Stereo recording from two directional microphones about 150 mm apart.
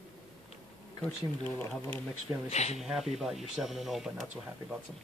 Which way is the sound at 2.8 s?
Centre (ahead or behind).